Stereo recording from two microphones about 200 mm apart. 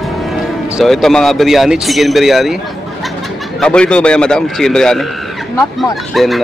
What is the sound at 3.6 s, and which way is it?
Speech, 5° left (ahead or behind).